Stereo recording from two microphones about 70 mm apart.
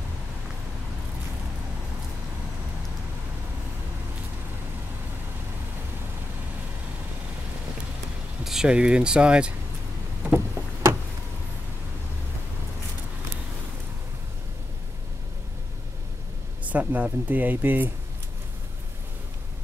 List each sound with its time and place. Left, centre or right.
8.5 s speech: centre
10.2 s a sound: right
16.6 s speech: right